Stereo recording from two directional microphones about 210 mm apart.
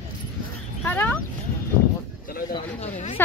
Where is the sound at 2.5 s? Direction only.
30° left (ahead or behind).